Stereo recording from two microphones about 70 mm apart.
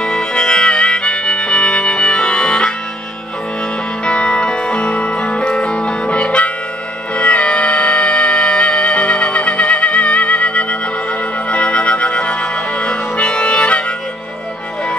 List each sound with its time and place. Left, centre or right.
0.0 s harmonica: centre
4.0 s music: centre